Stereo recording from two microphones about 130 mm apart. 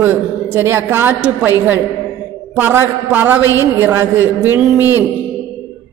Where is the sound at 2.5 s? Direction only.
15° right (ahead or behind).